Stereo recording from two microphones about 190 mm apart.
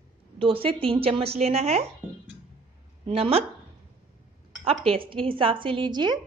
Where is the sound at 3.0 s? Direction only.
30° right (ahead or behind).